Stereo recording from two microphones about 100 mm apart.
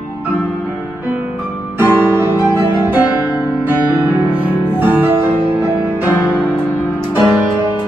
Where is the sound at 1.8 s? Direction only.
20° right (ahead or behind).